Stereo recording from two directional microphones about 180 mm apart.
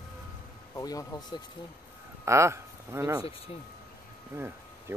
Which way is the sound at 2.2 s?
15° right (ahead or behind).